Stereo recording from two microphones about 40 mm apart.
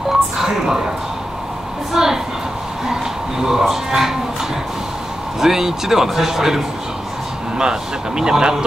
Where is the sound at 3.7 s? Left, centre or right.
Centre.